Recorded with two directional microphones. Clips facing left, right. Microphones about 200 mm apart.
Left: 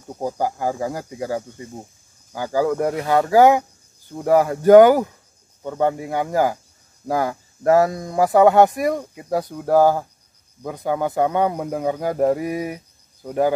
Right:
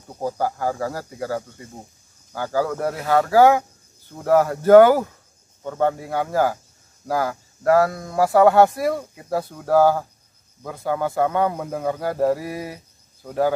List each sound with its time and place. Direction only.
0.1 s speech: 15° left (ahead or behind)
3.0 s speech: centre (ahead or behind)
3.3 s speech: 15° left (ahead or behind)